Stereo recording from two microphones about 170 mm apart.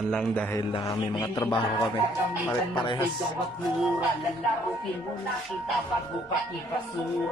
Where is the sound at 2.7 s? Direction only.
30° left (ahead or behind).